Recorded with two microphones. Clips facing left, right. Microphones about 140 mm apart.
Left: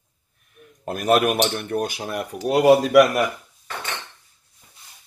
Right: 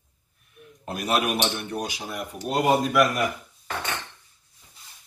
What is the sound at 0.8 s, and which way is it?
Speech, 50° left (ahead or behind).